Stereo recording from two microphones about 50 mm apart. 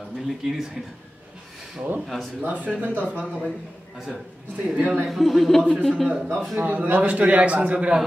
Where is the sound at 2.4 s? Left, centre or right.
Right.